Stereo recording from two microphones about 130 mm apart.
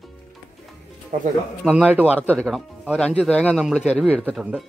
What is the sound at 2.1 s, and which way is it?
Speech, 10° left (ahead or behind).